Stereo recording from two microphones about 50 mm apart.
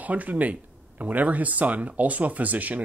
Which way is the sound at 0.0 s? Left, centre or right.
Right.